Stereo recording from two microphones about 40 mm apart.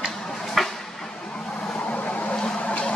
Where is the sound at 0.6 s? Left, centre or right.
Centre.